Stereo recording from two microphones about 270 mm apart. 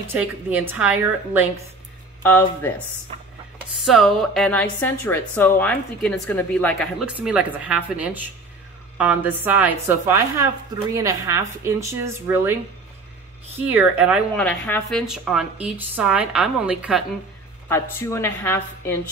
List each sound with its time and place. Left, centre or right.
0.0 s a woman's voice: centre
2.2 s a woman's voice: centre
3.7 s a woman's voice: centre
7.2 s a woman's voice: centre
13.7 s a woman's voice: centre
17.6 s a woman's voice: centre